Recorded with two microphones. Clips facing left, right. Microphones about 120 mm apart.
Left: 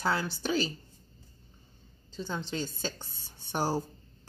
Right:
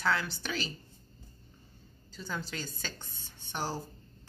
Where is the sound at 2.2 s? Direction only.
25° left (ahead or behind).